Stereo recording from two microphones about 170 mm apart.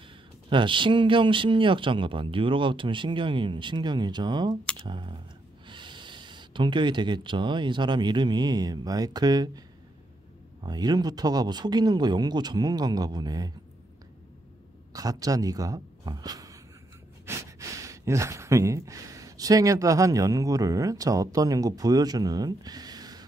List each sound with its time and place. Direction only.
0.5 s speech: 30° right (ahead or behind)
10.6 s speech: 25° right (ahead or behind)
14.9 s speech: 20° right (ahead or behind)